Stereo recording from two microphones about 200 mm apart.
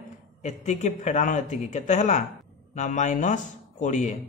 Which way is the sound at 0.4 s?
35° left (ahead or behind).